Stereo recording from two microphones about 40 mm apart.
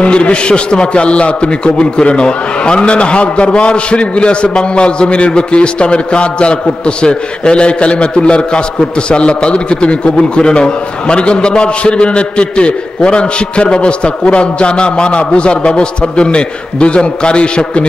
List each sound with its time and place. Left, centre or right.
0.0 s a man's voice: left